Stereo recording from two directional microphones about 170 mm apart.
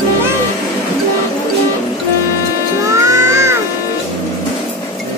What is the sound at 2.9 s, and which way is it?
Music, 15° right (ahead or behind).